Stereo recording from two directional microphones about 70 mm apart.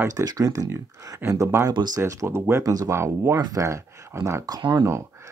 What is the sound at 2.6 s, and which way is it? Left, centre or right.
Speech, right.